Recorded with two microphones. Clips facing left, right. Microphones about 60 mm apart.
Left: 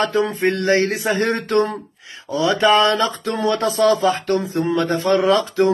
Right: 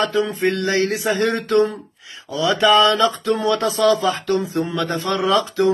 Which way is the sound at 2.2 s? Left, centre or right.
Left.